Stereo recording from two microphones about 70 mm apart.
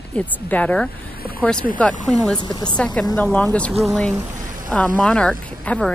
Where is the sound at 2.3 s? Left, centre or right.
Left.